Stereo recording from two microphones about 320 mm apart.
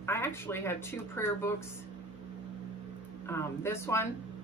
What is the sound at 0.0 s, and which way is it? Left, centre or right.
A woman's voice, centre.